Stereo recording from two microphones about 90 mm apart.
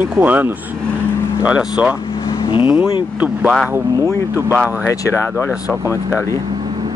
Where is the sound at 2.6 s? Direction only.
20° right (ahead or behind).